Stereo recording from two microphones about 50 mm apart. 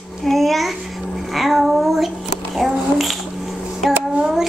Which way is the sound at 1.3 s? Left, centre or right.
Centre.